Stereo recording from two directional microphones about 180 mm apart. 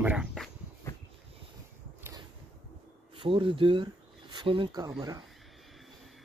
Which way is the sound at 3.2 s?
25° right (ahead or behind).